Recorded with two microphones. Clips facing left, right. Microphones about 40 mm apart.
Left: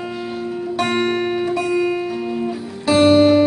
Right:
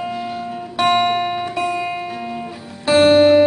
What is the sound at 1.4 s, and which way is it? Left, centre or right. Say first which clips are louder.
Music: left 3 dB; right.